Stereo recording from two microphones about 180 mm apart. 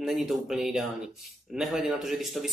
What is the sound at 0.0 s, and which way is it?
Speech, centre (ahead or behind).